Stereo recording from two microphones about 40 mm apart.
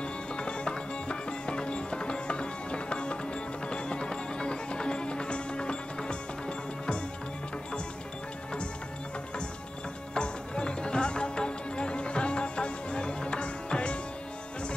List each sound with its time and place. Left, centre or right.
0.0 s music: left
10.1 s music: left